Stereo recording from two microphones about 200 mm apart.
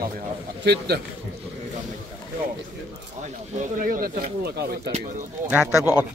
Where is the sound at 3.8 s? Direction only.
45° right (ahead or behind).